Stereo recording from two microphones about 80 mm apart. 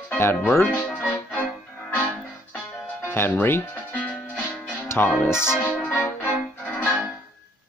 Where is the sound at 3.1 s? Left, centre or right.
Left.